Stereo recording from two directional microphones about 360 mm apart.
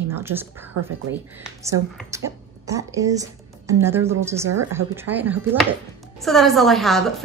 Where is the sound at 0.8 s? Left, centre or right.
Right.